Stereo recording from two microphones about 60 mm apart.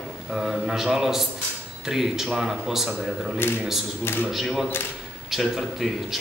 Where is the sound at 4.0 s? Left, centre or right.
Left.